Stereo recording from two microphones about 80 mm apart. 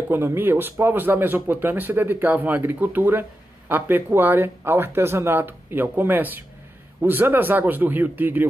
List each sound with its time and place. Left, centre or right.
0.1 s speech: right